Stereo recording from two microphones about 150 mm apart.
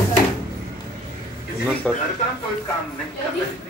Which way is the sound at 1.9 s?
5° left (ahead or behind).